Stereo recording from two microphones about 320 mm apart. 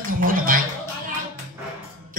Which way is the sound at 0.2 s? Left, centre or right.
Right.